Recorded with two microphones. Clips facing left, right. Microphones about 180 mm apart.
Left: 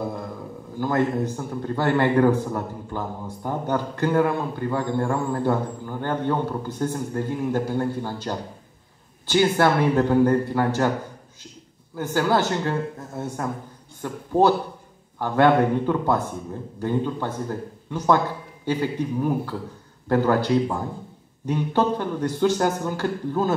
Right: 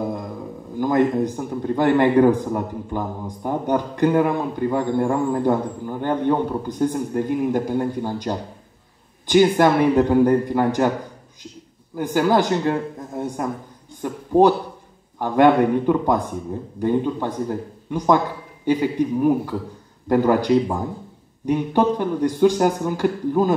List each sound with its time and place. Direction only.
0.7 s a man's voice: 15° right (ahead or behind)
11.9 s a man's voice: 15° right (ahead or behind)